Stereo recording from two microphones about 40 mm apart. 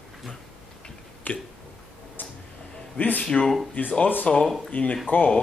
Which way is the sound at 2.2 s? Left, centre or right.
Left.